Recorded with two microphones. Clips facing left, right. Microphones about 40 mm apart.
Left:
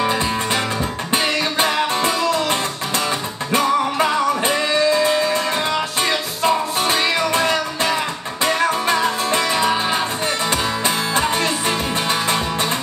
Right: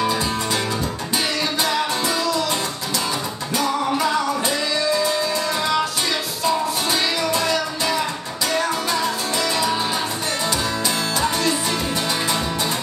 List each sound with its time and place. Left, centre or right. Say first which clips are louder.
1.1 s music: left 4 dB; left
3.5 s music: left 4 dB; left
11.1 s music: left 1 dB; left